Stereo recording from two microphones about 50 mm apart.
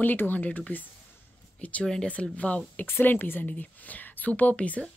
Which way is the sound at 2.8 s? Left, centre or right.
Left.